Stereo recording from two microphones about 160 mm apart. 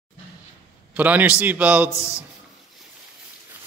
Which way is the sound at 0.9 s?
10° right (ahead or behind).